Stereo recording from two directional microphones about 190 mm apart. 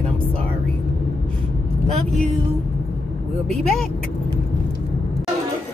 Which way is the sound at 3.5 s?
Centre (ahead or behind).